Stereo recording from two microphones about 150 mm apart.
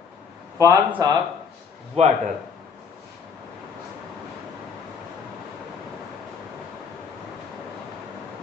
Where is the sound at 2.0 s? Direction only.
45° right (ahead or behind).